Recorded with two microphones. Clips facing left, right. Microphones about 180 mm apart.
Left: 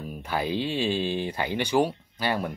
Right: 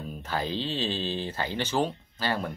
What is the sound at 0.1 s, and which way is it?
Speech, 10° left (ahead or behind).